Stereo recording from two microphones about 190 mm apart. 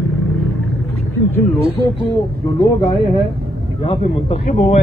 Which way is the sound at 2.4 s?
20° left (ahead or behind).